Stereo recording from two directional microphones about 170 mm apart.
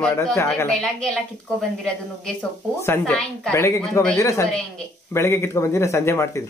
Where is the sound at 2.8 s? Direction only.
10° left (ahead or behind).